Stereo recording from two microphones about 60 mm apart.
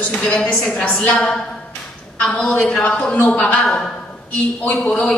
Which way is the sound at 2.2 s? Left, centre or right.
Centre.